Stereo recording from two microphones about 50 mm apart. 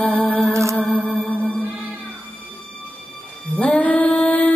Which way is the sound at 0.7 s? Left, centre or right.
Left.